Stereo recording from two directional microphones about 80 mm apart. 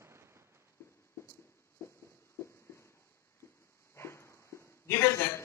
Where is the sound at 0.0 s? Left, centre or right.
Right.